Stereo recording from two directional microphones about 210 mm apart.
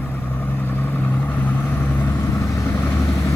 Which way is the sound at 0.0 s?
10° left (ahead or behind).